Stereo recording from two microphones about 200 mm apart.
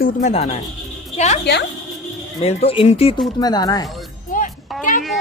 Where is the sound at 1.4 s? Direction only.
55° left (ahead or behind).